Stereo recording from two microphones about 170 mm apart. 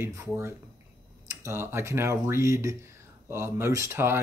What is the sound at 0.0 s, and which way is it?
Speech, 15° right (ahead or behind).